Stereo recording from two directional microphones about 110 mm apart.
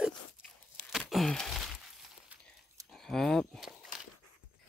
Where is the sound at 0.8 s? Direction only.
Centre (ahead or behind).